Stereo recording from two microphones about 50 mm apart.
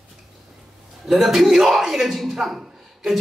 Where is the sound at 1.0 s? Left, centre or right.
Centre.